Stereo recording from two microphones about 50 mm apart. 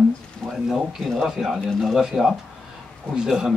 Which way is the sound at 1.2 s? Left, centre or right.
Centre.